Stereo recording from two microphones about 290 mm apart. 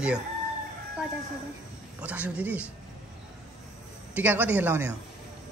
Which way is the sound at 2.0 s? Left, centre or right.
Centre.